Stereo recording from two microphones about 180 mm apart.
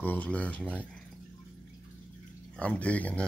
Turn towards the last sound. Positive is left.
turn(degrees=10)  # may be behind; listen again after turning